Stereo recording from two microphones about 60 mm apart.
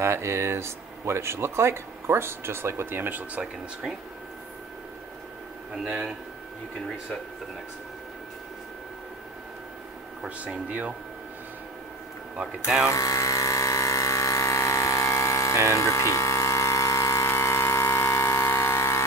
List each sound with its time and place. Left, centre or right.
0.0 s speech: right
10.2 s speech: centre
12.9 s a sound: left